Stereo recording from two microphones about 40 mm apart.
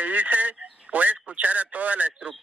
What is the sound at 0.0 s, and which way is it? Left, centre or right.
Speech, right.